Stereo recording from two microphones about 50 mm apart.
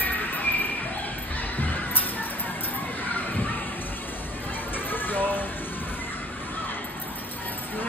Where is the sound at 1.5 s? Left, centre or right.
Left.